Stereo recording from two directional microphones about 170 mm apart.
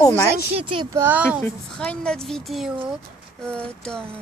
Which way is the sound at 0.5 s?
30° right (ahead or behind).